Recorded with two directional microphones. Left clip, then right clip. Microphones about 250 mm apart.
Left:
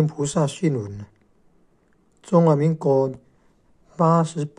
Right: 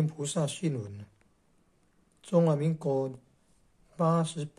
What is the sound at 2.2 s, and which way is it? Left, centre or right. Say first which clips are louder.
Speech: left 9 dB; centre.